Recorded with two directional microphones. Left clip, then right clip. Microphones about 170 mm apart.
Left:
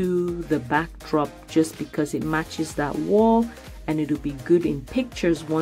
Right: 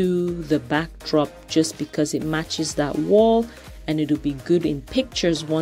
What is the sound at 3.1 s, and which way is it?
Speech, 25° right (ahead or behind).